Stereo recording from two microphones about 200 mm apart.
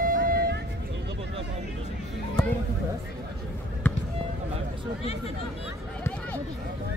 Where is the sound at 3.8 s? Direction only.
5° left (ahead or behind).